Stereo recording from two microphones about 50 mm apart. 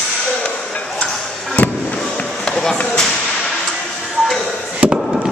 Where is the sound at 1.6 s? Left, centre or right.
Left.